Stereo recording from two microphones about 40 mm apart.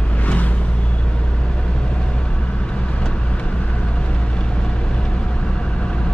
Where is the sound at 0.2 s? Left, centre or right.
Left.